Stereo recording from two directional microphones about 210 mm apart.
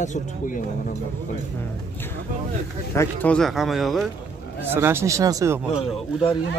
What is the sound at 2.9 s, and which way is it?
Speech, 10° left (ahead or behind).